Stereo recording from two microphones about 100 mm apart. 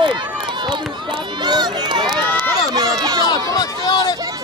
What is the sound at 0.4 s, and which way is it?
Run, 50° right (ahead or behind).